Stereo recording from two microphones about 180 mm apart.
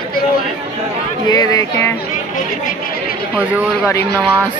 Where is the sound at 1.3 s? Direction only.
20° left (ahead or behind).